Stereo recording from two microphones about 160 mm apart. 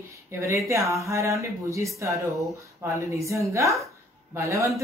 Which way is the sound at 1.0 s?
20° right (ahead or behind).